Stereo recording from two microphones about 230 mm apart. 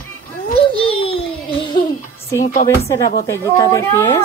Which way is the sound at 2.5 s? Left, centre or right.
Left.